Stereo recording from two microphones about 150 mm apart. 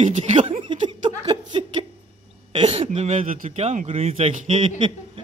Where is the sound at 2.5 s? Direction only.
40° right (ahead or behind).